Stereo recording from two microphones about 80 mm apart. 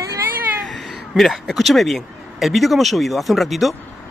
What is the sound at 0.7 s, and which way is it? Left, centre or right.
Speech, centre.